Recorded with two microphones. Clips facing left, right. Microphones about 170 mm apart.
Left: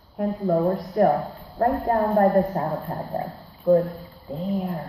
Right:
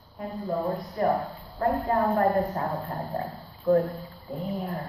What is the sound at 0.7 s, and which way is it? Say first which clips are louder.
A woman's voice: left 6 dB; 45° left (ahead or behind).